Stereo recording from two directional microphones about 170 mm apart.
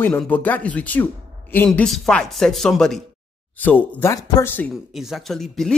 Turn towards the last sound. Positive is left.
turn(degrees=0)  # may be behind; listen again after turning